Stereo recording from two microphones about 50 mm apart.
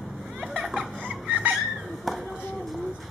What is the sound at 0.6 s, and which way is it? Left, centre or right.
Music, centre.